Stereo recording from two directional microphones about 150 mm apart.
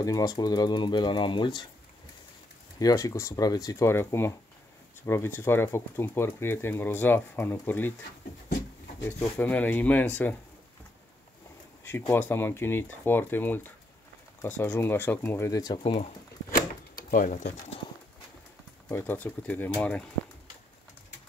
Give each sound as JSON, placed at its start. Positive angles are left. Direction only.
{"t": 0.0, "sound": "speech", "side_deg": 25}
{"t": 2.8, "sound": "speech", "side_deg": 25}
{"t": 9.2, "sound": "speech", "side_deg": 10}
{"t": 12.1, "sound": "speech", "side_deg": 15}
{"t": 15.8, "sound": "speech", "side_deg": 40}
{"t": 16.5, "sound": "a sound", "side_deg": 65}
{"t": 18.9, "sound": "speech", "side_deg": 15}